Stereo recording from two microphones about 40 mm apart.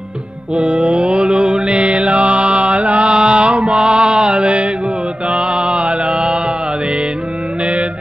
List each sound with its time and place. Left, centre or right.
0.6 s music: centre
0.9 s mantra: right
3.7 s music: right
5.3 s mantra: right